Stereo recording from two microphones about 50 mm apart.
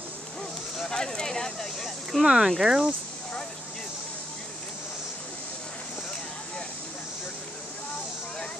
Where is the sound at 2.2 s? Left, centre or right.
Centre.